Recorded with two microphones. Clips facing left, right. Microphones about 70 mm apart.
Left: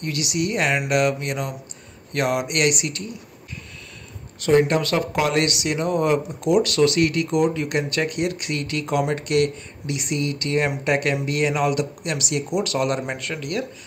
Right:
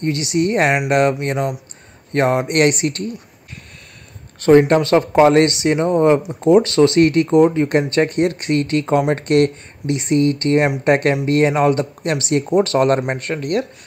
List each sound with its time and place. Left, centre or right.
0.0 s speech: right
4.4 s speech: right